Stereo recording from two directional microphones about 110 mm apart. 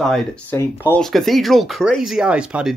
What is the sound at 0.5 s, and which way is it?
Speech, 20° left (ahead or behind).